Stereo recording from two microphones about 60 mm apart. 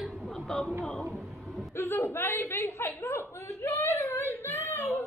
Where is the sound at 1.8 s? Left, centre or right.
Left.